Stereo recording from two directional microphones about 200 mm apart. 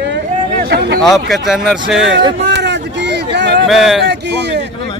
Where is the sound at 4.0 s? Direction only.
55° right (ahead or behind).